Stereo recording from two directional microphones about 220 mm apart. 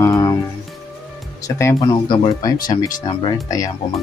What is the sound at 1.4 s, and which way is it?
Speech, 15° left (ahead or behind).